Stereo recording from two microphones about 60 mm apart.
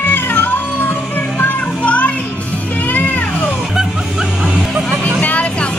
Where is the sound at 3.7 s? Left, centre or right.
Centre.